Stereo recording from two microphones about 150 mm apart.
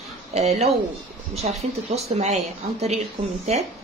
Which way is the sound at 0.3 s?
45° right (ahead or behind).